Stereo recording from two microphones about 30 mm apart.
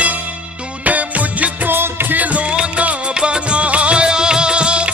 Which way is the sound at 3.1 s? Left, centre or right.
Right.